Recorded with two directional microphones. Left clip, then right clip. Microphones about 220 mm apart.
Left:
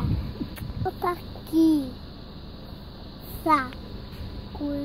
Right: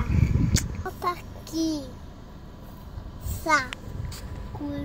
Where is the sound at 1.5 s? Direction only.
20° left (ahead or behind).